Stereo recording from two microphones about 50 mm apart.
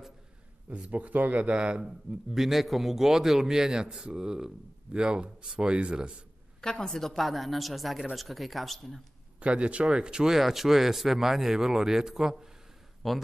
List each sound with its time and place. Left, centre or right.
0.8 s speech: right
1.8 s speech: centre
6.6 s a woman's voice: centre
9.4 s speech: right
13.0 s a woman's voice: centre